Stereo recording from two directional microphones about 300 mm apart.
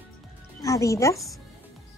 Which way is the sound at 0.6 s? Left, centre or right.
Centre.